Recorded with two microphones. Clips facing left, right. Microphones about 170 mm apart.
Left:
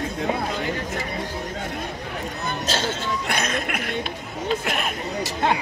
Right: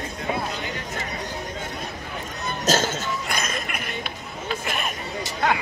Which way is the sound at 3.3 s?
65° left (ahead or behind).